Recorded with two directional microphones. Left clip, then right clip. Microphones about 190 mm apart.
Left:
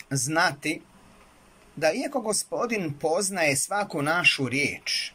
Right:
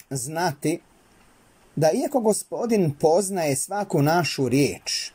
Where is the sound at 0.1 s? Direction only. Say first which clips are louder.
Left 2 dB; 35° right (ahead or behind).